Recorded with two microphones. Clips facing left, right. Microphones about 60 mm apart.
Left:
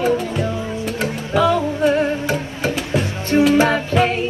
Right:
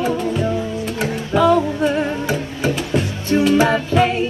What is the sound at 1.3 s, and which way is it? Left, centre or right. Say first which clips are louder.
Music: right 2 dB; centre.